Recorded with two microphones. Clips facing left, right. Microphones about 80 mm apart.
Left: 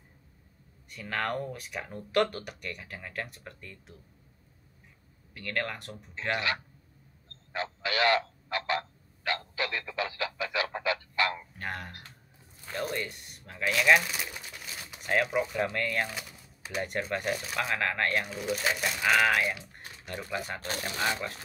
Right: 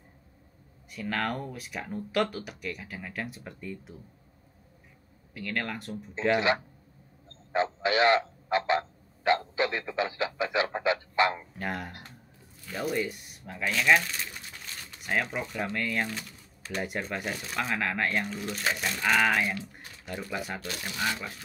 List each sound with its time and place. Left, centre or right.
0.8 s speech: centre
5.3 s speech: centre
7.2 s a sound: right
11.5 s speech: centre
13.7 s crumpling: centre
15.0 s speech: centre
16.1 s a sound: centre
16.8 s speech: centre
20.6 s speech: left